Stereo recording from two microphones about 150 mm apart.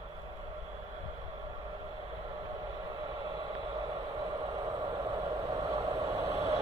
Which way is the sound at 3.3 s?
30° right (ahead or behind).